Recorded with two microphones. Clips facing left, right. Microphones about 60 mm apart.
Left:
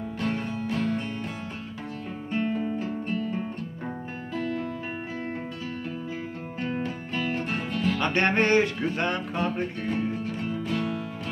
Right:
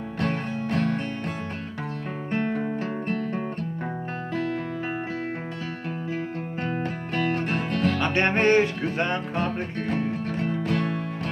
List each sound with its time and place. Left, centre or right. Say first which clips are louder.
0.2 s music: right 2 dB; right
2.3 s music: right 1 dB; right
6.6 s music: even; right
8.0 s music: even; right
9.8 s music: right 4 dB; right